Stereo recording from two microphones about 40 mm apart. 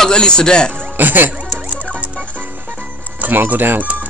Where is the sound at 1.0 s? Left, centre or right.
Right.